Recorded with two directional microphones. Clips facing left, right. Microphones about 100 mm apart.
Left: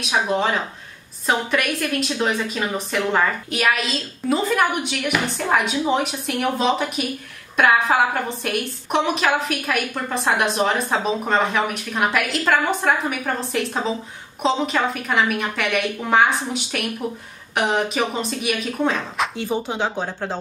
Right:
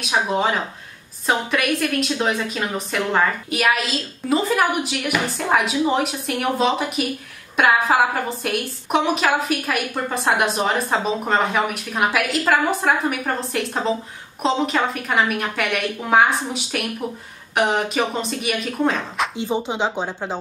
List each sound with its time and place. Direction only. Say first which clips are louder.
0.0 s a woman's voice: even; centre (ahead or behind)
19.3 s speech: right 1 dB; 20° right (ahead or behind)